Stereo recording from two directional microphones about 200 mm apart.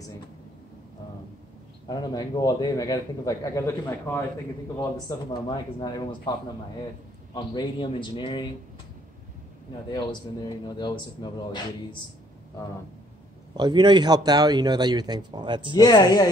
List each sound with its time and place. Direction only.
1.9 s a man's voice: 20° left (ahead or behind)
5.3 s a man's voice: 25° left (ahead or behind)
7.3 s a man's voice: 25° left (ahead or behind)
9.8 s a man's voice: 20° left (ahead or behind)
13.6 s a man's voice: 20° right (ahead or behind)
15.7 s a man's voice: 20° left (ahead or behind)